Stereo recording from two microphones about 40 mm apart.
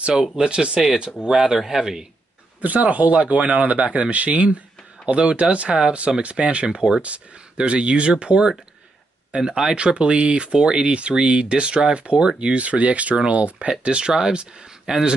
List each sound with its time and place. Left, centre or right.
0.4 s speech: right
1.2 s speech: centre
2.6 s speech: right; by 7.0 s centre
7.0 s speech: right
14.9 s speech: centre